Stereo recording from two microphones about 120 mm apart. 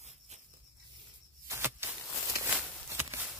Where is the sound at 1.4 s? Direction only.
20° right (ahead or behind).